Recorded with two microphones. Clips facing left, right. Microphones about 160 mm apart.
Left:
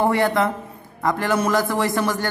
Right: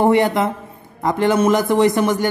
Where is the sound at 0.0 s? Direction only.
20° right (ahead or behind).